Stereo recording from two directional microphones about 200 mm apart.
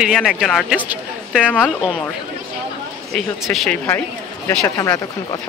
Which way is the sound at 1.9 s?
Centre (ahead or behind).